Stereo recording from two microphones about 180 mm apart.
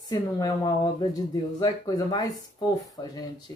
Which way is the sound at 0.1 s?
20° left (ahead or behind).